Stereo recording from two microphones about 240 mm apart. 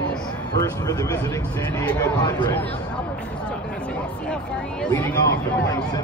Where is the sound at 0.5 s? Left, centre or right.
Centre.